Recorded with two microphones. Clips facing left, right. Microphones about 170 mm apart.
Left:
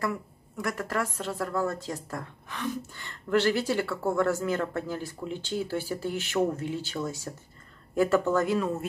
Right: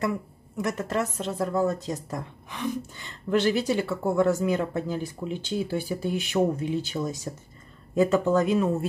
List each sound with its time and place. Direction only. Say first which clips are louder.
0.6 s a woman's voice: right 3 dB; 20° right (ahead or behind)